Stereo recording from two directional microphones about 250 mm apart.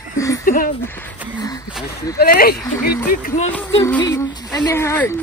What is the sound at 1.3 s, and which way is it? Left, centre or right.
Speech, centre.